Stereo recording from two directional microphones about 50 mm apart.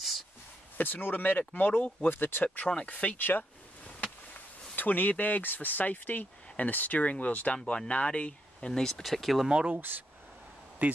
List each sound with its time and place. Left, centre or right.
0.7 s speech: left
3.2 s speech: left
4.7 s speech: left; by 9.5 s centre
9.7 s speech: right